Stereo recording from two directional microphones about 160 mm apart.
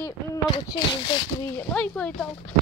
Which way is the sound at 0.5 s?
30° left (ahead or behind).